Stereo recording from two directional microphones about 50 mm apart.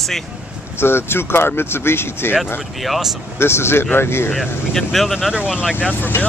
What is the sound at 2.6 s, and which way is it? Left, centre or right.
Speech, centre.